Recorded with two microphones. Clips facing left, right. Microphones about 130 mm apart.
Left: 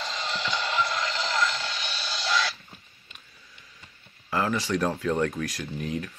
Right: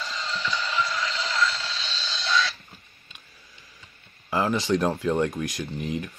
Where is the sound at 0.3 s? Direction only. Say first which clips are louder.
Even; 70° left (ahead or behind).